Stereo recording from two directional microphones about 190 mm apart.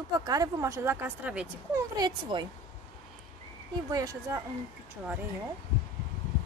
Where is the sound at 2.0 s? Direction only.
25° right (ahead or behind).